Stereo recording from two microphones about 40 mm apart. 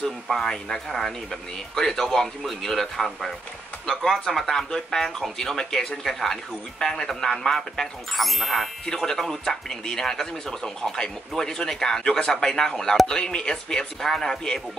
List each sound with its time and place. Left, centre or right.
0.4 s speech: centre
8.1 s speech: centre
8.8 s speech: centre